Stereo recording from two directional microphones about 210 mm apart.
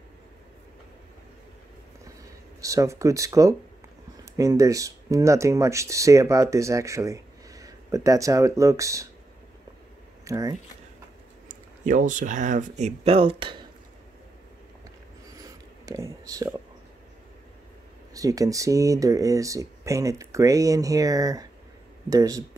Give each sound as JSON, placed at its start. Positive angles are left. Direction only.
{"t": 2.6, "sound": "speech", "side_deg": -15}
{"t": 10.2, "sound": "speech", "side_deg": -15}
{"t": 11.4, "sound": "speech", "side_deg": -40}
{"t": 15.8, "sound": "speech", "side_deg": -15}
{"t": 18.1, "sound": "speech", "side_deg": -15}